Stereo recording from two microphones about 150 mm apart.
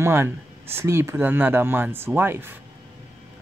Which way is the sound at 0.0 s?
15° right (ahead or behind).